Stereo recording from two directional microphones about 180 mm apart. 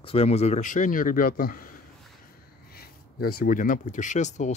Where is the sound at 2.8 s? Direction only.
55° left (ahead or behind); by 4.5 s 40° left (ahead or behind).